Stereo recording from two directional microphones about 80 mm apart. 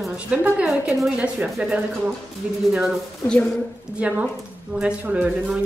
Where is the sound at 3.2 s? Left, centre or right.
Left.